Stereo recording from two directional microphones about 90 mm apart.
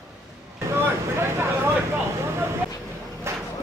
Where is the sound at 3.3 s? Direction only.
30° right (ahead or behind).